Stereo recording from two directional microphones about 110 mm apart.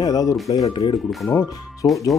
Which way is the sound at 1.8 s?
35° left (ahead or behind).